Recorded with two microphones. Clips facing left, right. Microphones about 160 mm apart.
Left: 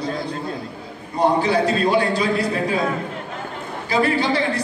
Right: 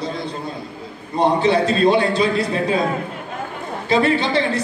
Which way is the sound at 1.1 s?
25° right (ahead or behind).